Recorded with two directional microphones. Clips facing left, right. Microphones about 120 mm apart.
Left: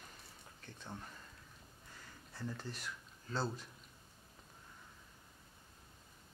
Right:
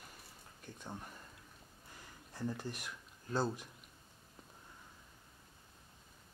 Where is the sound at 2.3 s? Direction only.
15° right (ahead or behind).